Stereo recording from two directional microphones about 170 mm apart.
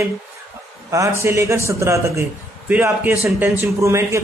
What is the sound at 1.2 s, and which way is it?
Speech, 15° right (ahead or behind).